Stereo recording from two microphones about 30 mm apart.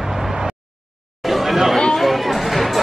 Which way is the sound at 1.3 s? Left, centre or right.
Centre.